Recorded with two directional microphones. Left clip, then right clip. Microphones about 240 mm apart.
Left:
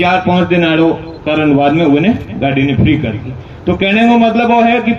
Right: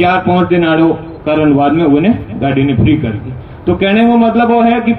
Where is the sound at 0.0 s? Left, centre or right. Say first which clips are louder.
Right 1 dB; centre.